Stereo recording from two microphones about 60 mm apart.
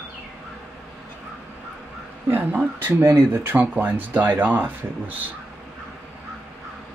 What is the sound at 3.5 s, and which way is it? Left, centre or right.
Speech, right.